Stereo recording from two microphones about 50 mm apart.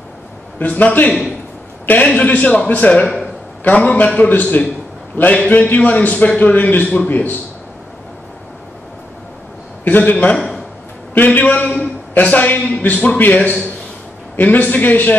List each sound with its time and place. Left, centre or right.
0.6 s a man's voice: left
9.8 s a man's voice: left
10.3 s a sound: centre
11.2 s a man's voice: left